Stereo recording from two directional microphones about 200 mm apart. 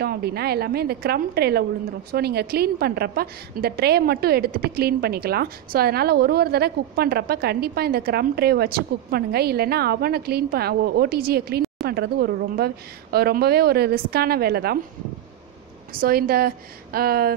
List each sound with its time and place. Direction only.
0.0 s a woman's voice: 50° right (ahead or behind)
15.9 s a woman's voice: 45° right (ahead or behind)